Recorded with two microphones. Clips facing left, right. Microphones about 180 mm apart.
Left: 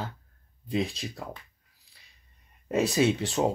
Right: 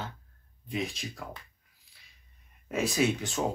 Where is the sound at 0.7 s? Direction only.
35° left (ahead or behind).